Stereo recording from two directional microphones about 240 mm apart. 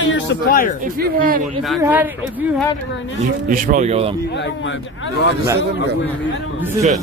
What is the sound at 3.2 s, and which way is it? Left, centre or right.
Speech, right.